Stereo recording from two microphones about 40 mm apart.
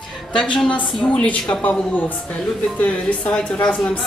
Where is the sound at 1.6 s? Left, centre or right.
Left.